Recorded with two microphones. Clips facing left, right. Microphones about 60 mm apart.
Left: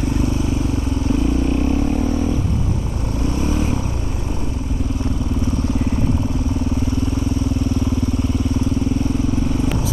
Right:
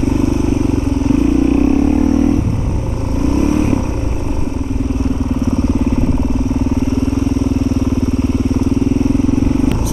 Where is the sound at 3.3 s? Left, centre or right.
Right.